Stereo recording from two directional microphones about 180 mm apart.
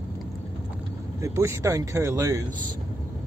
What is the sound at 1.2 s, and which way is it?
Speech, 15° right (ahead or behind).